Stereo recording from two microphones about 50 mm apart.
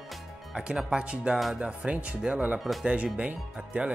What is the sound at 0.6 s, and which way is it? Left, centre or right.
Speech, centre.